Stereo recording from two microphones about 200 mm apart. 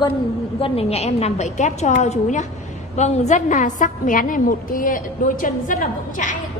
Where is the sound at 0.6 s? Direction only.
30° left (ahead or behind).